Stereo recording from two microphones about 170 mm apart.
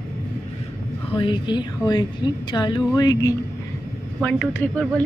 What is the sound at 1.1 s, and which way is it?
A woman's voice, 30° left (ahead or behind).